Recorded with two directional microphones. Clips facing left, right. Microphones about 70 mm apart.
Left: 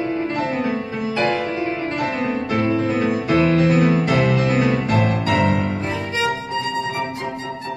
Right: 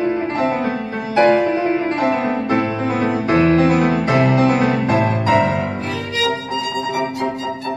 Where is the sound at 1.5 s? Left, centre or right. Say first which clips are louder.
Right 5 dB; right.